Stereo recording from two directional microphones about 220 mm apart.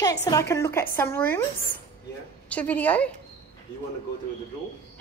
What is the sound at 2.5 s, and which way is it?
Speech, 5° left (ahead or behind).